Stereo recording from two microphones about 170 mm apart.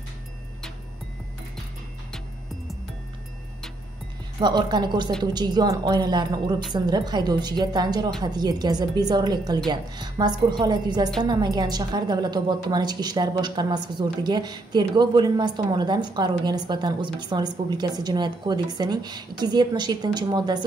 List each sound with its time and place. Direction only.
4.4 s a woman's voice: 25° right (ahead or behind)